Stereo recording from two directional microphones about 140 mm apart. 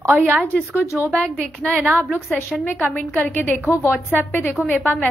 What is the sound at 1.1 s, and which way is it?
Speech, 5° left (ahead or behind).